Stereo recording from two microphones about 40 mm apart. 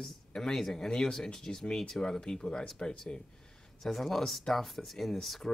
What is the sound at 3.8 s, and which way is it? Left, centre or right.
Speech, centre.